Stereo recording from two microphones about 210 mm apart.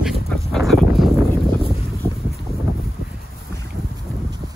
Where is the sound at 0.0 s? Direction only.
Centre (ahead or behind).